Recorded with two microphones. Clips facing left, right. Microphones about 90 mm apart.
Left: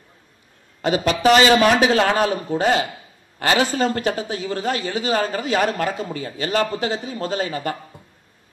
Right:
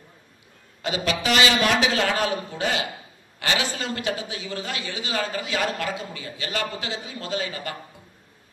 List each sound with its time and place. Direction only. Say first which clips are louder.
0.8 s a woman's voice: left 8 dB; 40° left (ahead or behind)